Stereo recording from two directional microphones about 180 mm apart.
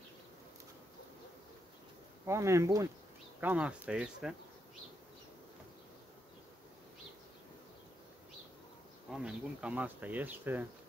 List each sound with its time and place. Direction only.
2.2 s speech: 15° right (ahead or behind)
9.1 s speech: 5° right (ahead or behind)